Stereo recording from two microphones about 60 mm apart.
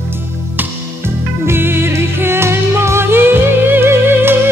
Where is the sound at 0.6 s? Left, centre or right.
Right.